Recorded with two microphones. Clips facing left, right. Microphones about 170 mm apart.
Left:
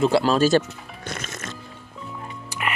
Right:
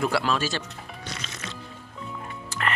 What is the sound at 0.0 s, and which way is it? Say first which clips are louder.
Speech: left 7 dB; 30° left (ahead or behind).